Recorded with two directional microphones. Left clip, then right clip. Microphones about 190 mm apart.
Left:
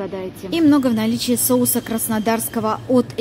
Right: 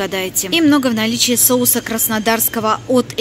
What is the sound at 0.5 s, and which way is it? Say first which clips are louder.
A woman's voice: right 2 dB; centre (ahead or behind).